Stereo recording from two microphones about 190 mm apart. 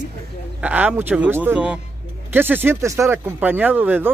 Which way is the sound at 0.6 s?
10° right (ahead or behind).